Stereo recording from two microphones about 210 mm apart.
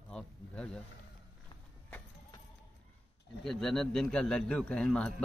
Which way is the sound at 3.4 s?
Centre (ahead or behind).